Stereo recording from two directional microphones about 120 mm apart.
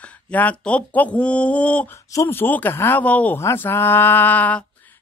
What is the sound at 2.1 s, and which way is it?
Mantra, 20° left (ahead or behind).